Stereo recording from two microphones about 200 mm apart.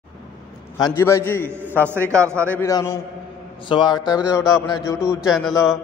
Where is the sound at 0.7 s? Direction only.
15° left (ahead or behind).